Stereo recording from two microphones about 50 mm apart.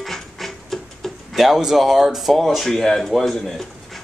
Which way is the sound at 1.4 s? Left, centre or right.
Centre.